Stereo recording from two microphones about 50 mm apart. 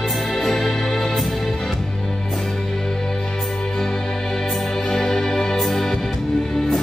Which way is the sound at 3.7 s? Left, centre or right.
Centre.